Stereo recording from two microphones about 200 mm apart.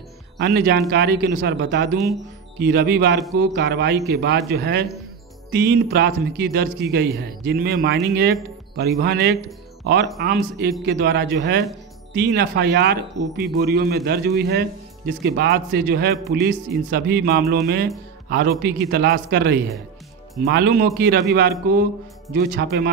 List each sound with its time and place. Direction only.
0.4 s a man's voice: 50° right (ahead or behind)